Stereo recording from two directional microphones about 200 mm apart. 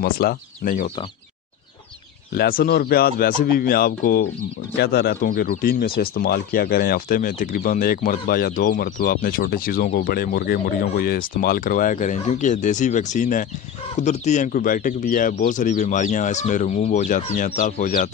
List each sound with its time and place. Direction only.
0.0 s speech: 50° left (ahead or behind)
2.3 s speech: 50° left (ahead or behind)